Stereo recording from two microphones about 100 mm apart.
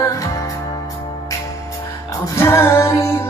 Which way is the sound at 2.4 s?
25° left (ahead or behind).